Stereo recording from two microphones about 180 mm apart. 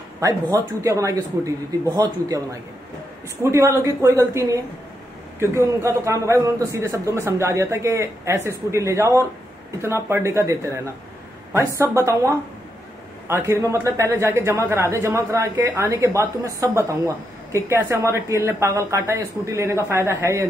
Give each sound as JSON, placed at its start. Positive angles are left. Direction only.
{"t": 0.2, "sound": "speech", "side_deg": -20}
{"t": 3.4, "sound": "a man's voice", "side_deg": -15}